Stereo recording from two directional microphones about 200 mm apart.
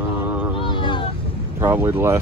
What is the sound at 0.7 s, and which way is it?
Vehicle, 25° left (ahead or behind).